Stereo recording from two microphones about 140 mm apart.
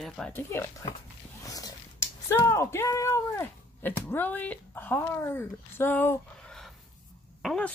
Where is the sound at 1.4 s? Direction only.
25° left (ahead or behind).